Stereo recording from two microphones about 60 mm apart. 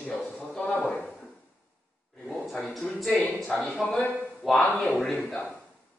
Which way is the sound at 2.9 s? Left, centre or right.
Centre.